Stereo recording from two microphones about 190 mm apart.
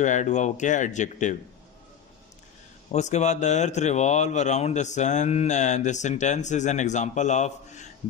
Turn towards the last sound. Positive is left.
turn(degrees=40)  # may be behind; listen again after turning